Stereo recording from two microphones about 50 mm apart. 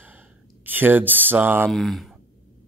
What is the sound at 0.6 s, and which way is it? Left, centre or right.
Speech, right.